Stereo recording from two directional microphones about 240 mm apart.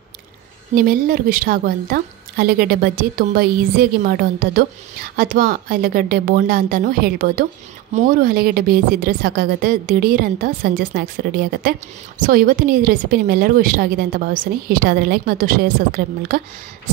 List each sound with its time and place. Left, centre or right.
0.7 s a woman's voice: right